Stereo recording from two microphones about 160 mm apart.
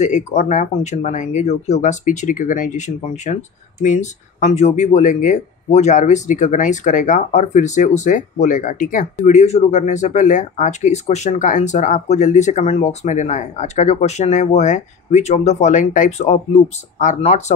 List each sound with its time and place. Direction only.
0.0 s speech: 45° left (ahead or behind)
9.2 s speech: 45° left (ahead or behind)